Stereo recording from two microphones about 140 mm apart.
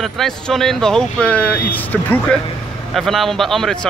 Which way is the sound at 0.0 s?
Centre (ahead or behind).